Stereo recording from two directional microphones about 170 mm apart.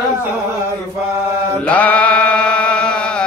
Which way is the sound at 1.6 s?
10° left (ahead or behind).